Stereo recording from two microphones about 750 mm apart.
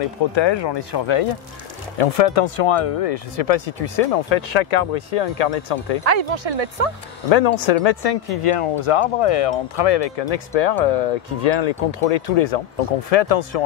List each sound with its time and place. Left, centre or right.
0.3 s speech: left
2.0 s speech: left
6.0 s speech: right
7.2 s speech: left